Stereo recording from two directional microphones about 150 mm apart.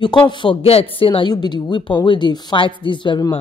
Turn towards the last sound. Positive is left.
turn(degrees=30)  # may be behind; listen again after turning